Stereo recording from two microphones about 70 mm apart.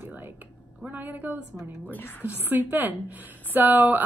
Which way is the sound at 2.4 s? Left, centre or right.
Right.